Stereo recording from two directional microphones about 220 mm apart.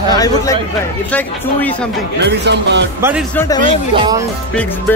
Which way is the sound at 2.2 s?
50° right (ahead or behind).